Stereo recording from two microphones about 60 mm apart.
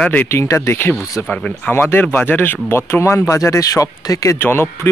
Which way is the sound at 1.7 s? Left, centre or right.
Left.